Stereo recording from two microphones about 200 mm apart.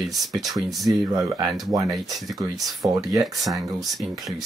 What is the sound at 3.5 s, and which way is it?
Speech, centre (ahead or behind).